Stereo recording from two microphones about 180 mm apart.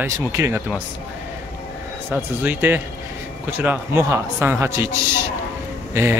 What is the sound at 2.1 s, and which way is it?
Speech, 10° right (ahead or behind).